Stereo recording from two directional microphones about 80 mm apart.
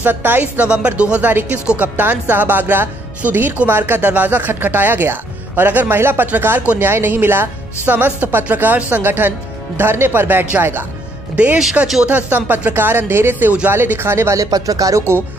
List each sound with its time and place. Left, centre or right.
0.0 s speech: right